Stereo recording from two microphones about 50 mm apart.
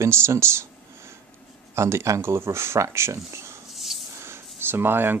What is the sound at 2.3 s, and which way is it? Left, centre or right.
Speech, right.